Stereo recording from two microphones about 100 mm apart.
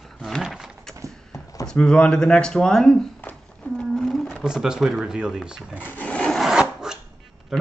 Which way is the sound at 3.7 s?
5° left (ahead or behind).